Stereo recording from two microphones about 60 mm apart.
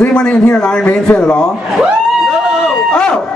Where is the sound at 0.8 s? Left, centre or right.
Centre.